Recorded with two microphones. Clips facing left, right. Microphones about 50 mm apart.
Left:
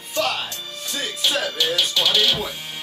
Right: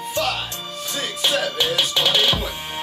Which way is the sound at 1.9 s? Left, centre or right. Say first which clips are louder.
Right 1 dB; right.